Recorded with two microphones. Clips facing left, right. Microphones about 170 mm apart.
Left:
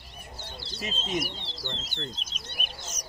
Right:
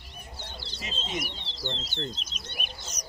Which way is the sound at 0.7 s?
45° left (ahead or behind).